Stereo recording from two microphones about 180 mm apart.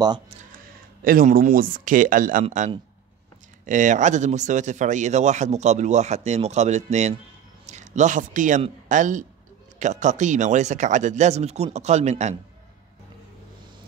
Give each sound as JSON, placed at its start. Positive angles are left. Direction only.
{"t": 1.0, "sound": "a man's voice", "side_deg": -50}